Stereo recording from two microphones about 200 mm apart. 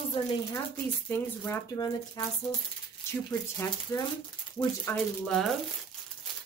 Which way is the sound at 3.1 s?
15° left (ahead or behind).